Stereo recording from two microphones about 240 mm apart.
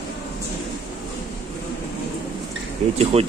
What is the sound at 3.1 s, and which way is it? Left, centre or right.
Speech, right.